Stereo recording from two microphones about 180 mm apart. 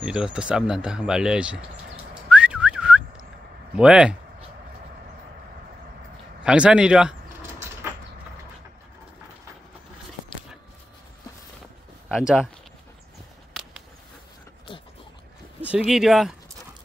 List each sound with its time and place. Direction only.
0.0 s speech: 5° right (ahead or behind)
2.2 s whistling: 5° right (ahead or behind)
3.7 s speech: 5° right (ahead or behind)
6.4 s speech: 5° right (ahead or behind)
12.1 s speech: 5° right (ahead or behind)
15.7 s speech: 5° right (ahead or behind)